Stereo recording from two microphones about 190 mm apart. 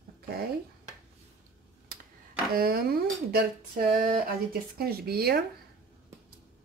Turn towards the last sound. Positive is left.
turn(degrees=-55)  # may be behind; listen again after turning